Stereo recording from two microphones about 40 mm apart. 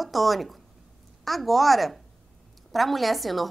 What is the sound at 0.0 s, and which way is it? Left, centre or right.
A woman's voice, centre.